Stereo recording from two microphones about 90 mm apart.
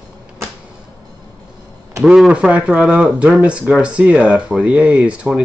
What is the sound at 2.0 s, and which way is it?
Speech, centre (ahead or behind).